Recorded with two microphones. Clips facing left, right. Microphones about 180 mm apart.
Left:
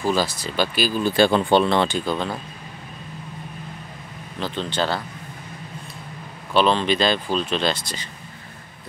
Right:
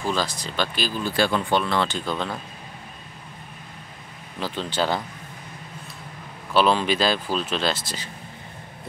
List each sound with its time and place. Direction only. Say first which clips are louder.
0.1 s speech: left 4 dB; 5° left (ahead or behind)
1.0 s speech: left 5 dB; 25° left (ahead or behind)
1.9 s speech: left 3 dB; 5° left (ahead or behind)
4.4 s speech: left 1 dB; 10° right (ahead or behind)
6.5 s speech: left 1 dB; 5° right (ahead or behind)